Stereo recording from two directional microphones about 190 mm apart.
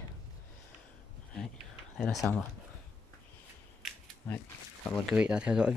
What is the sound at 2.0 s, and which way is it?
Speech, centre (ahead or behind).